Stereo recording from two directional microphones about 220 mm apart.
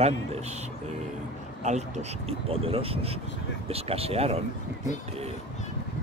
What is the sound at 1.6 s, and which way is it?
Speech, 30° right (ahead or behind).